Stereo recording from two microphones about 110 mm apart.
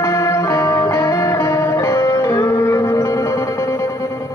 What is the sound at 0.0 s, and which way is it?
Music, 30° left (ahead or behind).